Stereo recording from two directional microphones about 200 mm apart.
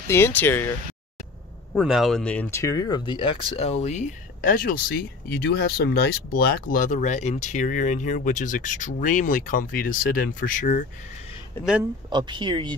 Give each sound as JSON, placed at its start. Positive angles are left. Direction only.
{"t": 0.1, "sound": "speech", "side_deg": 10}
{"t": 1.8, "sound": "speech", "side_deg": 0}
{"t": 11.6, "sound": "speech", "side_deg": 10}
{"t": 12.1, "sound": "speech", "side_deg": -20}